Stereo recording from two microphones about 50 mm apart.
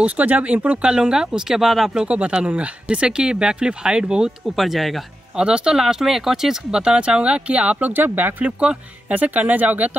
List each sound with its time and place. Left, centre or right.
0.0 s speech: right; by 2.0 s centre
2.0 s speech: right
4.6 s speech: centre
5.3 s speech: centre
7.8 s speech: right
8.5 s speech: right